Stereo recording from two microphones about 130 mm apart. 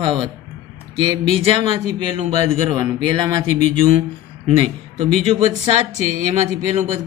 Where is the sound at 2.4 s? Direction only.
35° right (ahead or behind).